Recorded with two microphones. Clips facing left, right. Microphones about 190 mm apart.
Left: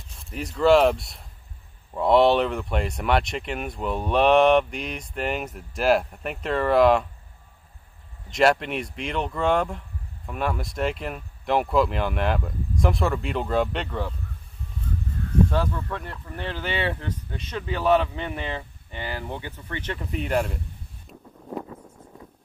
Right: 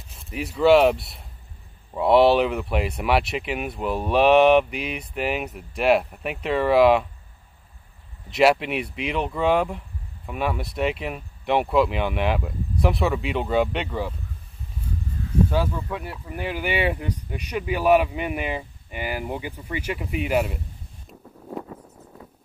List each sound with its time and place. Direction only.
0.2 s speech: 5° right (ahead or behind)
8.3 s speech: 5° right (ahead or behind)
15.5 s speech: 10° right (ahead or behind)